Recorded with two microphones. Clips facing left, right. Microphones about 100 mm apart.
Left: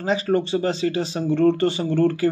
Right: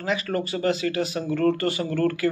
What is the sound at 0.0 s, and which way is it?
Speech, 30° left (ahead or behind).